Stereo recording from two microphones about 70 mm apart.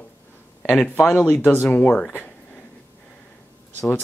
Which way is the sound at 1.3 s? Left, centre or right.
Left.